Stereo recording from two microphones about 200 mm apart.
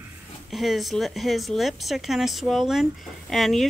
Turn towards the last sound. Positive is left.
turn(degrees=0)  # may be behind; listen again after turning